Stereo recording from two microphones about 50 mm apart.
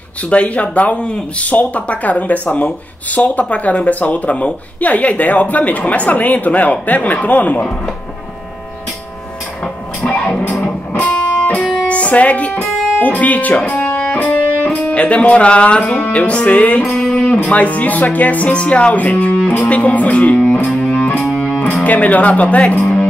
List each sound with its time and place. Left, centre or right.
0.3 s speech: left
10.0 s music: centre
10.6 s music: left
13.8 s speech: left
20.9 s music: left
21.8 s speech: left